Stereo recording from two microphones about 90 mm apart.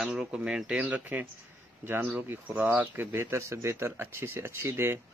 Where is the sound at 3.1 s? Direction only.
30° right (ahead or behind).